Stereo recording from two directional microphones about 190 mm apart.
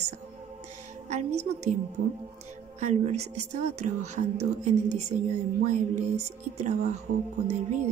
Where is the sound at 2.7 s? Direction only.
35° right (ahead or behind).